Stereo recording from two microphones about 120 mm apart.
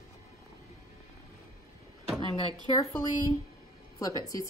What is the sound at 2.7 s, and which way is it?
Speech, 40° left (ahead or behind).